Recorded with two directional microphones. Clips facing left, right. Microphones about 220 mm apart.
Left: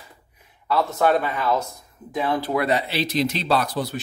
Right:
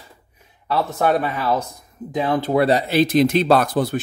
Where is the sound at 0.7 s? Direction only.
20° right (ahead or behind); by 4.0 s 50° right (ahead or behind).